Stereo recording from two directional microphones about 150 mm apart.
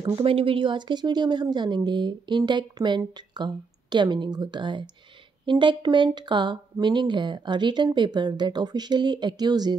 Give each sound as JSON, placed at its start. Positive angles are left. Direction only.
{"t": 0.0, "sound": "speech", "side_deg": -35}